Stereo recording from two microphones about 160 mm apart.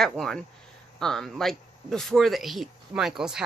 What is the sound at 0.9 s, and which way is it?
Speech, 5° left (ahead or behind).